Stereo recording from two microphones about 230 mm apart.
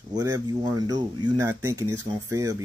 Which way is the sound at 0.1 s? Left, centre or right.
Centre.